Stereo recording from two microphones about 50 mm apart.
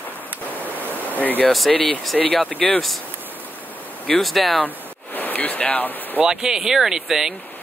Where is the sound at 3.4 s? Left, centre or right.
Left.